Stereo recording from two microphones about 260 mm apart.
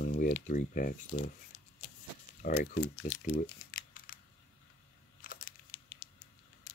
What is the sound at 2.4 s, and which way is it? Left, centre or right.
Speech, left.